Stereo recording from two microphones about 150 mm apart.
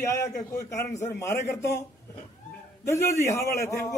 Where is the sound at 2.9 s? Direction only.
20° left (ahead or behind).